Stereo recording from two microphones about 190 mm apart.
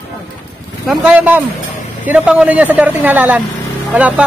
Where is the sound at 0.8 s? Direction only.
Centre (ahead or behind).